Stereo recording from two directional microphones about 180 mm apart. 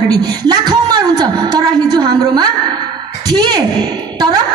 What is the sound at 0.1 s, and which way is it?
A woman's voice, 20° right (ahead or behind).